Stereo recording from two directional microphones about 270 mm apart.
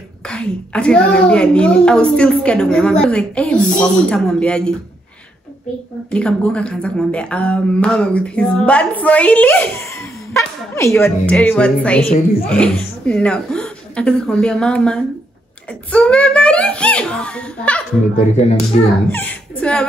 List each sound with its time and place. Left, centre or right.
0.3 s a woman's voice: centre
6.0 s a woman's voice: centre
18.1 s speech: left
19.0 s speech: centre